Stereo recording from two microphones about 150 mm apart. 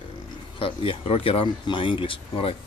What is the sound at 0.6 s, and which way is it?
Speech, 35° left (ahead or behind).